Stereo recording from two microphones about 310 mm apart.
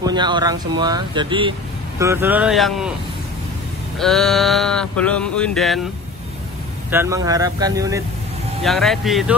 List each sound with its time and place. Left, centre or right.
0.0 s speech: centre
2.0 s sheep: centre
4.0 s sheep: centre
6.9 s speech: centre
8.6 s sheep: centre